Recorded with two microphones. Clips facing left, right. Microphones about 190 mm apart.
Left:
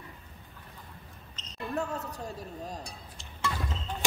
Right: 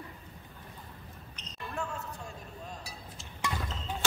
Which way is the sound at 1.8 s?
40° left (ahead or behind).